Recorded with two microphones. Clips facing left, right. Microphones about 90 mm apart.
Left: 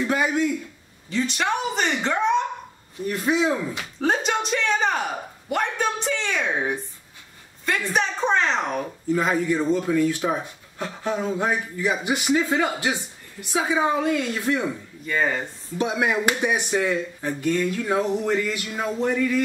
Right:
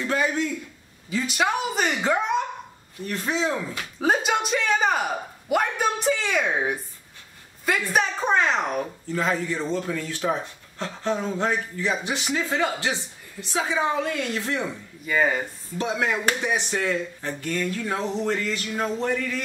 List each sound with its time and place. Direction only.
0.0 s speech: 15° left (ahead or behind)
1.1 s speech: 5° right (ahead or behind)
3.1 s speech: 15° left (ahead or behind)
4.0 s speech: 5° right (ahead or behind)
9.1 s speech: 15° left (ahead or behind)
15.0 s speech: 10° right (ahead or behind)
15.8 s speech: 15° left (ahead or behind)